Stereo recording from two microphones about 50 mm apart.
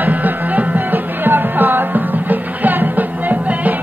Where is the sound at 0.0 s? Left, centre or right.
Right.